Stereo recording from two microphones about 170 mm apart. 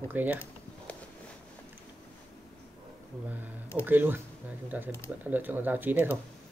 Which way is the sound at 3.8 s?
10° right (ahead or behind).